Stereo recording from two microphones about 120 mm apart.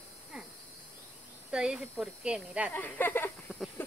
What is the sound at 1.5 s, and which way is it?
Speech, 5° right (ahead or behind).